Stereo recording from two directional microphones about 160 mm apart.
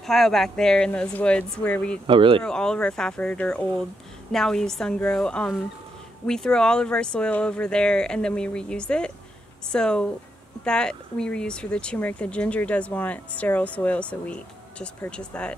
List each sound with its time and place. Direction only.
0.0 s speech: centre (ahead or behind)
2.0 s speech: 30° right (ahead or behind)
2.4 s speech: 5° left (ahead or behind)